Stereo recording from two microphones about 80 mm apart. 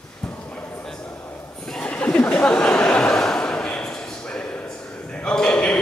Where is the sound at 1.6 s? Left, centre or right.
Centre.